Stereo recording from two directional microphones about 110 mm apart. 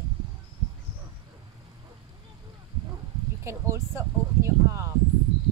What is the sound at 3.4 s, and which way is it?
Speech, 25° right (ahead or behind).